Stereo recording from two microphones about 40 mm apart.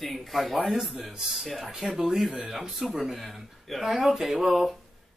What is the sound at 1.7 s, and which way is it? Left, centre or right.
A man's voice, centre.